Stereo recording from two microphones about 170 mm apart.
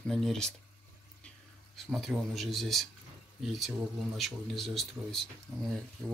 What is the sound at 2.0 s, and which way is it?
Speech, centre (ahead or behind).